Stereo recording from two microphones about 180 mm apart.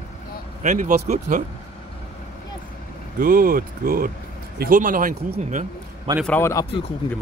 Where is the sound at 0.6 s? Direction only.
45° right (ahead or behind).